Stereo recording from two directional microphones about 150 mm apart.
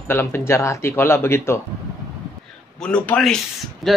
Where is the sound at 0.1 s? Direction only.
15° left (ahead or behind).